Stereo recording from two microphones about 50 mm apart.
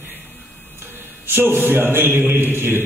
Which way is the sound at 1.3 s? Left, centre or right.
Right.